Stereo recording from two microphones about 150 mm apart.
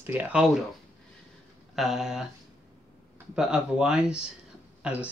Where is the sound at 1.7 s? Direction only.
Centre (ahead or behind).